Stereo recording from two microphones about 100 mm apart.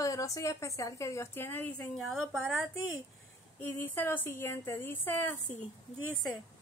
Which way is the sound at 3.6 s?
20° left (ahead or behind).